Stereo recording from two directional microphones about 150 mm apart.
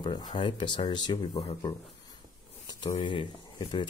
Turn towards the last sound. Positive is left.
turn(degrees=35)  # may be behind; listen again after turning